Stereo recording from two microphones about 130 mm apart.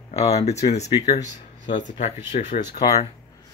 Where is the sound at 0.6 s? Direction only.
55° left (ahead or behind).